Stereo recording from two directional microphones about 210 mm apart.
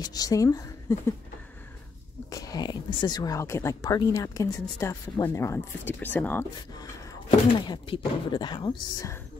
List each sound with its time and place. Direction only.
0.0 s speech: 15° left (ahead or behind)
2.2 s speech: 15° left (ahead or behind)
6.7 s speech: 20° left (ahead or behind)